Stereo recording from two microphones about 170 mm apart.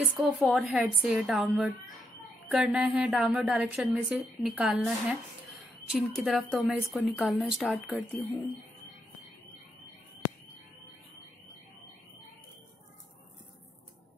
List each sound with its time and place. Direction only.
0.2 s a woman's voice: centre (ahead or behind)